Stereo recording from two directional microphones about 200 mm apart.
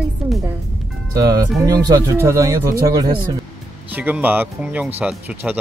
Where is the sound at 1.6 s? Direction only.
15° right (ahead or behind).